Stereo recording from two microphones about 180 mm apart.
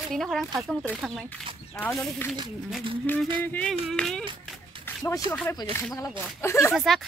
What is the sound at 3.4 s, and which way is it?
Speech, 5° left (ahead or behind).